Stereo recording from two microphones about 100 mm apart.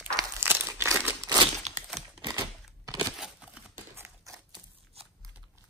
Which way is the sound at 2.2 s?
45° right (ahead or behind).